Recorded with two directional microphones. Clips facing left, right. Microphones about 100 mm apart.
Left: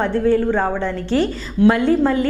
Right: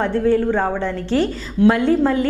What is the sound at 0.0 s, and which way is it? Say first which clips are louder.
A woman's voice: even; 15° left (ahead or behind).